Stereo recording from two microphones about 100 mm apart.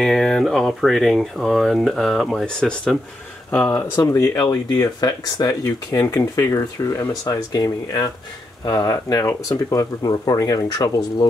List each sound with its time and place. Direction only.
0.0 s speech: 5° left (ahead or behind)
3.4 s speech: 20° left (ahead or behind)
4.4 s speech: 45° left (ahead or behind); by 7.1 s 30° left (ahead or behind)
7.1 s speech: 40° left (ahead or behind)